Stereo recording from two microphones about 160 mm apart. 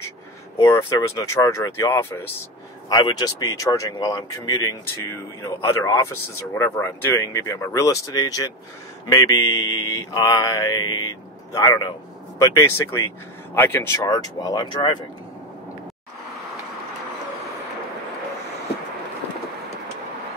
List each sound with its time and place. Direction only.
0.6 s speech: 20° left (ahead or behind)
2.9 s speech: 25° left (ahead or behind)